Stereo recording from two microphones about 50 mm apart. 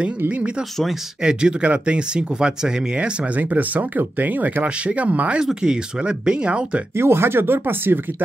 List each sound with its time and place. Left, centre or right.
1.2 s speech: centre
3.3 s speech: right
4.6 s speech: right
5.4 s speech: centre
7.0 s speech: right